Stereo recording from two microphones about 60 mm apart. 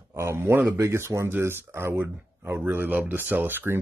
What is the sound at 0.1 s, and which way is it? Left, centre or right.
Speech, right.